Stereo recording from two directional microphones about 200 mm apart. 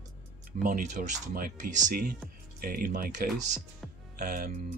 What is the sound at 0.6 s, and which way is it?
Speech, 45° right (ahead or behind).